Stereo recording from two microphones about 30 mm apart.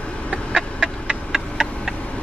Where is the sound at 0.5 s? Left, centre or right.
Right.